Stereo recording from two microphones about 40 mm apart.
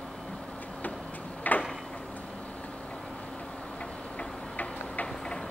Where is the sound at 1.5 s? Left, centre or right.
Left.